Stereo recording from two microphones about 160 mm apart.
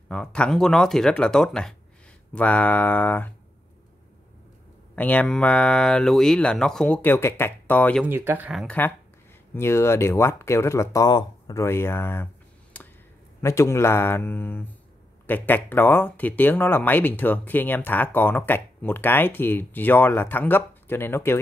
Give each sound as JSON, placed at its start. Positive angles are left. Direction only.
{"t": 0.1, "sound": "speech", "side_deg": 5}
{"t": 4.9, "sound": "speech", "side_deg": 10}
{"t": 8.0, "sound": "speech", "side_deg": -15}
{"t": 8.6, "sound": "speech", "side_deg": 10}
{"t": 12.7, "sound": "a sound", "side_deg": 10}
{"t": 13.4, "sound": "speech", "side_deg": 20}